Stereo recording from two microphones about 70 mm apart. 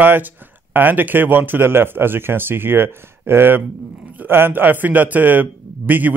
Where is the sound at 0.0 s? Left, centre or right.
Right.